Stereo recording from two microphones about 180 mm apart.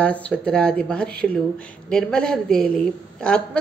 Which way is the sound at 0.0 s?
5° left (ahead or behind).